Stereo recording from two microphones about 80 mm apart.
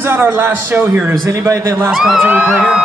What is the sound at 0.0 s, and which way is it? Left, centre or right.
A man's voice, right.